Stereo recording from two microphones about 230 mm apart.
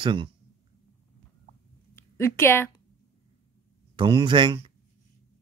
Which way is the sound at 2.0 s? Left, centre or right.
Centre.